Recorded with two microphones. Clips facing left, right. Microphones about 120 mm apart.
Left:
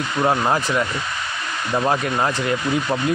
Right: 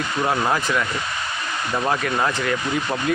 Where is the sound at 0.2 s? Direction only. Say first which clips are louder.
Left 3 dB; 20° left (ahead or behind).